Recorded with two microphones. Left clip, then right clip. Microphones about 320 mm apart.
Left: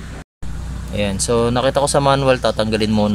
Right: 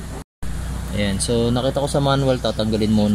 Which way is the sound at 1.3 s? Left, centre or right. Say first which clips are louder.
Left 5 dB; left.